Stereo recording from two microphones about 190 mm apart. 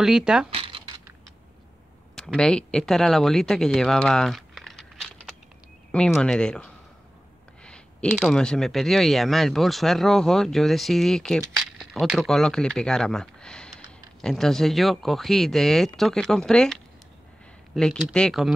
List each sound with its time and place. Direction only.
0.0 s speech: 5° right (ahead or behind)
0.5 s a sound: 30° right (ahead or behind)
2.1 s speech: 5° left (ahead or behind)